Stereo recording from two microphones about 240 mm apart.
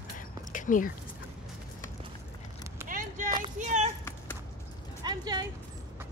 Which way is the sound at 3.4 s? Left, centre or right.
Right.